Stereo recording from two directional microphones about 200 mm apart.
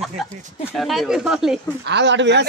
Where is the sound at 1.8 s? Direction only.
60° right (ahead or behind).